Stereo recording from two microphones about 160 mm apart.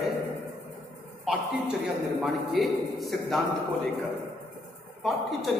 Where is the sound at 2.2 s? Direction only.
Centre (ahead or behind).